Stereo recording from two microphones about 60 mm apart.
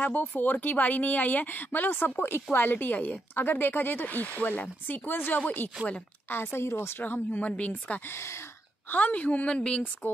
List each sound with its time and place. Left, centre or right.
0.0 s a woman's voice: left
7.0 s a woman's voice: left
8.1 s a woman's voice: left
8.9 s a woman's voice: left